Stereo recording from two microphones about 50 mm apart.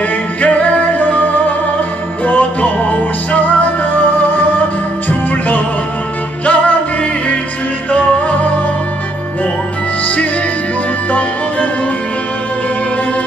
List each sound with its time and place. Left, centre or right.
0.4 s music: left
6.4 s music: left
11.1 s music: left